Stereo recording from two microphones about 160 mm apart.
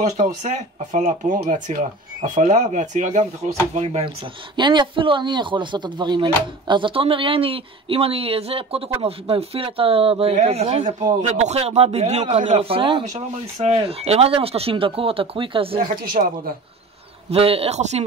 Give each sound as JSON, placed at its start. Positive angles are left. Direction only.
{"t": 0.0, "sound": "speech", "side_deg": -50}
{"t": 13.0, "sound": "speech", "side_deg": -45}
{"t": 16.0, "sound": "speech", "side_deg": -65}
{"t": 17.3, "sound": "speech", "side_deg": -35}